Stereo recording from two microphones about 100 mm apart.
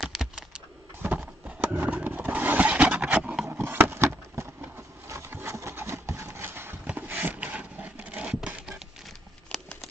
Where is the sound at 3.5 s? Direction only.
20° right (ahead or behind).